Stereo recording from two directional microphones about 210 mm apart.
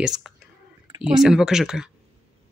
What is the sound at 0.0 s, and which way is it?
Speech, centre (ahead or behind).